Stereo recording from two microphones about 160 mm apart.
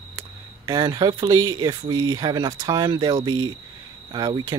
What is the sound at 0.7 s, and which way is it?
Speech, 25° right (ahead or behind).